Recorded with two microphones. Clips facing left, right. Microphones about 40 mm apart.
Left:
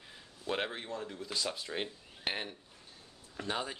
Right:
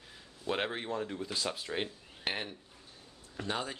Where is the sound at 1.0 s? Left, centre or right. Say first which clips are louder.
Right 2 dB; centre.